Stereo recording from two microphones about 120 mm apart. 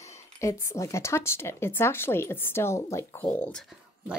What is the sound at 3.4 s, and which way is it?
Speech, 10° left (ahead or behind).